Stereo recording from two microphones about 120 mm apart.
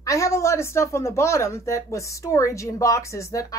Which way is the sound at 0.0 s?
25° left (ahead or behind).